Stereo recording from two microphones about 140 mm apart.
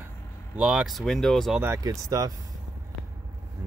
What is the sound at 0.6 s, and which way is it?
Speech, 5° right (ahead or behind).